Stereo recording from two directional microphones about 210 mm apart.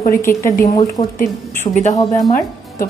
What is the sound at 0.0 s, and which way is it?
A woman's voice, 10° left (ahead or behind).